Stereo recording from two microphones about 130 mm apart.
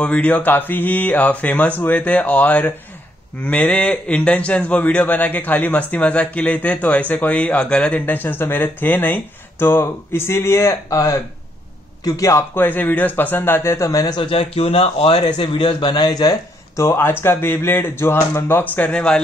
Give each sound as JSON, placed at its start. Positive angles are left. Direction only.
{"t": 0.0, "sound": "a man's voice", "side_deg": 10}